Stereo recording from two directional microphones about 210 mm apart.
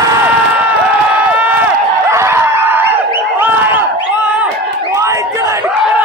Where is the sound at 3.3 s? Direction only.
10° right (ahead or behind).